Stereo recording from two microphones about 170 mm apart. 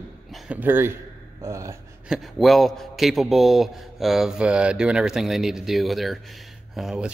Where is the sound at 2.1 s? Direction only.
Centre (ahead or behind).